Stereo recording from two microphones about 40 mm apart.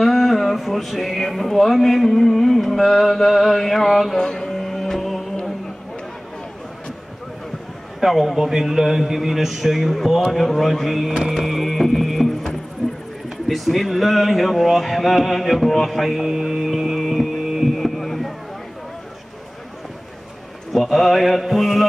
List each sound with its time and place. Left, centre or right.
0.0 s speech: centre
4.2 s mantra: centre
4.5 s music: centre
8.0 s speech: centre
17.7 s a sound: centre
20.7 s speech: centre